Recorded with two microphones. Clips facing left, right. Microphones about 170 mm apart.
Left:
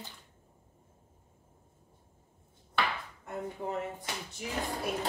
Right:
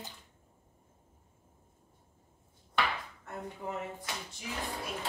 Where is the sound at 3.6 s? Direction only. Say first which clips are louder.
Left 2 dB; 25° left (ahead or behind).